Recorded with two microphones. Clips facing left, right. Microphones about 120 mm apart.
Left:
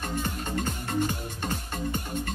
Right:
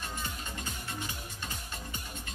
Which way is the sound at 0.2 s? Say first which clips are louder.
Left 10 dB; 50° left (ahead or behind).